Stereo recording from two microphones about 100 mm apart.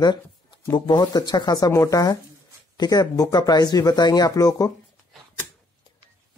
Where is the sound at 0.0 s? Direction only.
45° left (ahead or behind).